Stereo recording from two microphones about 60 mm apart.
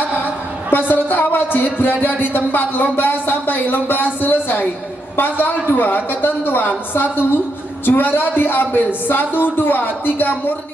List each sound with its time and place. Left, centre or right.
0.2 s speech: left